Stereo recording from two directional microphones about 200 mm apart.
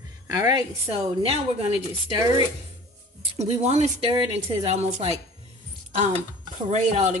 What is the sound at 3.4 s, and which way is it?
Chopping, 35° right (ahead or behind).